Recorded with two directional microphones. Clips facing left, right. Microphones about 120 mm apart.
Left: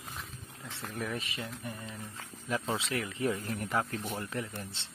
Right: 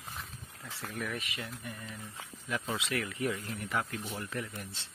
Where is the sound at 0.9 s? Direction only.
30° left (ahead or behind).